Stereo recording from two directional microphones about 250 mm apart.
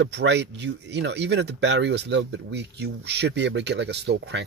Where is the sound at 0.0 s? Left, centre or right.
Right.